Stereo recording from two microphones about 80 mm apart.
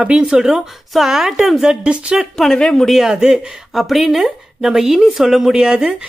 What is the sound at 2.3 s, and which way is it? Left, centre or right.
Speech, centre.